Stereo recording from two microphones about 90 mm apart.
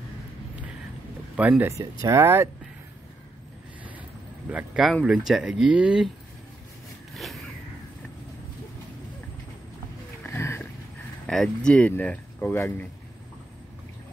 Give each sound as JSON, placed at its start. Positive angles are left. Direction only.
{"t": 1.3, "sound": "speech", "side_deg": -15}
{"t": 1.7, "sound": "speech", "side_deg": -35}
{"t": 4.5, "sound": "speech", "side_deg": -20}
{"t": 5.0, "sound": "speech", "side_deg": -10}
{"t": 7.2, "sound": "a sound", "side_deg": 0}
{"t": 10.2, "sound": "a sound", "side_deg": 30}
{"t": 11.2, "sound": "speech", "side_deg": 5}